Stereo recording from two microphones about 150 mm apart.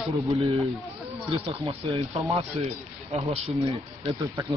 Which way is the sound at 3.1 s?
40° right (ahead or behind).